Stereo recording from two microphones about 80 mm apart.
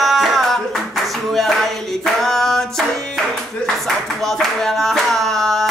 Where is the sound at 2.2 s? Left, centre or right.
Centre.